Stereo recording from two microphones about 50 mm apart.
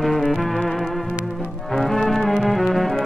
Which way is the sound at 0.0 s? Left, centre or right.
Centre.